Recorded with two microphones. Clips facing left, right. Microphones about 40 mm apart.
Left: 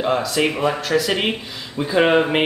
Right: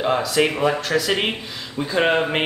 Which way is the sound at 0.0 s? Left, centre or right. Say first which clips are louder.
Even; centre.